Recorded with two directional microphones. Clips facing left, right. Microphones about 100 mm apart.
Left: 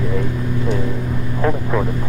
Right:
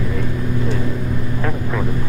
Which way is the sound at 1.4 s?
15° left (ahead or behind).